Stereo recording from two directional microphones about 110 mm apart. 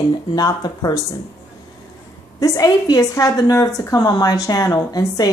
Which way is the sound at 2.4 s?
35° left (ahead or behind).